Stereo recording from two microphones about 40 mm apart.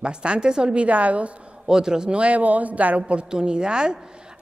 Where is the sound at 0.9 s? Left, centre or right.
Right.